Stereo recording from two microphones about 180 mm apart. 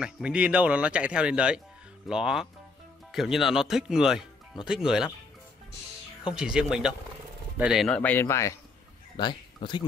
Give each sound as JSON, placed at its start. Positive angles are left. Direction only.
{"t": 0.0, "sound": "speech", "side_deg": -5}
{"t": 6.3, "sound": "speech", "side_deg": -5}